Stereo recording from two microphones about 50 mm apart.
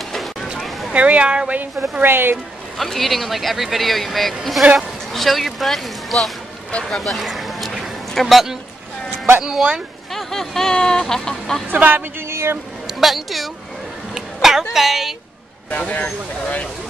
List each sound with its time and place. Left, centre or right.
0.1 s a sound: centre
0.9 s speech: right
1.6 s a woman's voice: right
2.8 s speech: centre
6.8 s a sound: centre
9.4 s speech: centre
10.1 s speech: centre
11.7 s a woman's voice: right
12.3 s a sound: right
12.8 s a woman's voice: centre
15.9 s speech: left